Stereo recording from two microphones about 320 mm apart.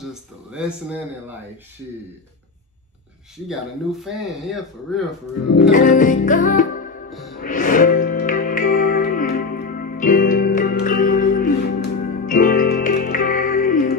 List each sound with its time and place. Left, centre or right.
0.0 s speech: centre
3.4 s speech: centre
5.6 s music: left